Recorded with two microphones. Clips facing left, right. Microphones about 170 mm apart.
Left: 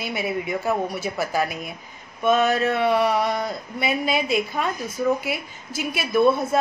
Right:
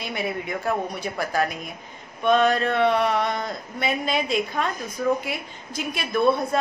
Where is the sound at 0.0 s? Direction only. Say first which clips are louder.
Left 2 dB; 5° left (ahead or behind).